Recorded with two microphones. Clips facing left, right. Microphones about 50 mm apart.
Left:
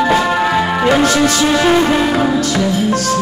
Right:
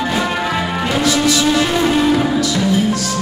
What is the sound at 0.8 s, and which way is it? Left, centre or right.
Music, left.